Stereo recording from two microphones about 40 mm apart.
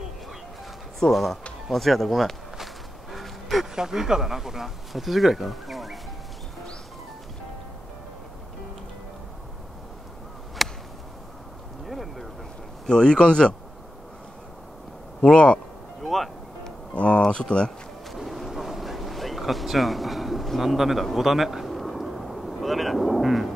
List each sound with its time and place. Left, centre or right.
0.9 s speech: centre
2.5 s walk: centre
3.7 s speech: centre
10.6 s chop: centre
11.8 s a sound: centre
12.8 s speech: left
15.2 s speech: left
16.0 s speech: centre
16.9 s speech: left
18.1 s a sound: centre